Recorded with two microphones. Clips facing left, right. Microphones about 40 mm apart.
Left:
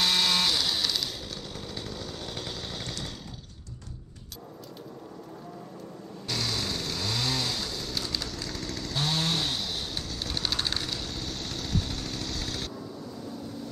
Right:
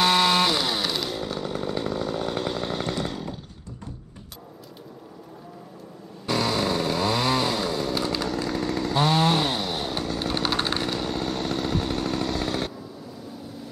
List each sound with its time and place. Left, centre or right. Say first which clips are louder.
0.0 s chainsaw: right 6 dB; centre
6.2 s chainsaw: right 8 dB; centre